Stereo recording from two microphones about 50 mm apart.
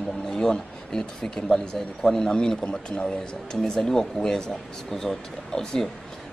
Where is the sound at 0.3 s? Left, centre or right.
Centre.